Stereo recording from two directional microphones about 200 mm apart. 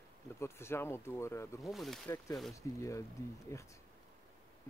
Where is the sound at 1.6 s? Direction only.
Centre (ahead or behind).